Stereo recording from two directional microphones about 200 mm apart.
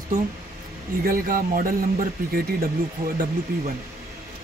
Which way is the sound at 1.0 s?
45° right (ahead or behind).